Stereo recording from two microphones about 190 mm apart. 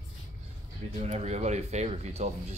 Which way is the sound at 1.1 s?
35° right (ahead or behind).